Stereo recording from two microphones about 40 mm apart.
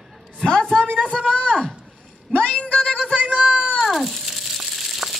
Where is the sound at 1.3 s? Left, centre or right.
Left.